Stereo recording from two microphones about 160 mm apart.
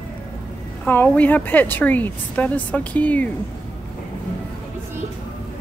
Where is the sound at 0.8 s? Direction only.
10° left (ahead or behind).